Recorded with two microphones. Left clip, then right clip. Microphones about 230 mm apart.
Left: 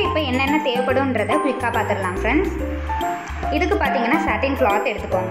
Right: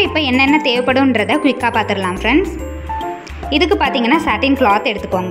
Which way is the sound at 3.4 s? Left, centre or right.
Right.